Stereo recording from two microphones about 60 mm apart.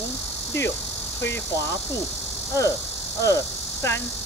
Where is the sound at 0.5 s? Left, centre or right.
Left.